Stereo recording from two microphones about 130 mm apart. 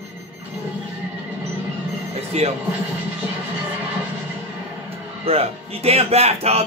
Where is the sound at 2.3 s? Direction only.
55° right (ahead or behind).